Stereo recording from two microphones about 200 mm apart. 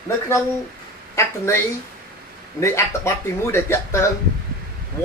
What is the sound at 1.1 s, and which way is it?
Speech, 15° left (ahead or behind).